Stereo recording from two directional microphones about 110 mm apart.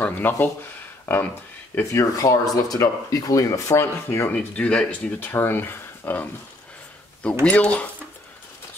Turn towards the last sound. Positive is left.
turn(degrees=10)  # may be behind; listen again after turning